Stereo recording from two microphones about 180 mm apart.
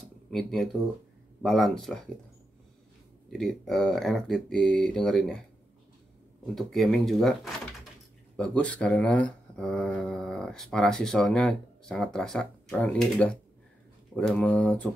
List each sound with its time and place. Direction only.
0.3 s speech: centre (ahead or behind)
3.3 s speech: centre (ahead or behind)
6.4 s speech: centre (ahead or behind)